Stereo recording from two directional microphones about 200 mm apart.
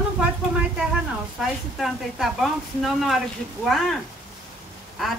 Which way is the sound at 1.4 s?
Centre (ahead or behind).